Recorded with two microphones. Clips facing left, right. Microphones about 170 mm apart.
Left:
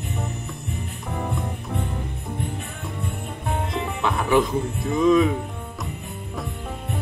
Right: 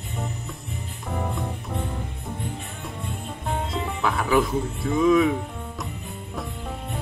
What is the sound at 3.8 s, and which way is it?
Music, centre (ahead or behind).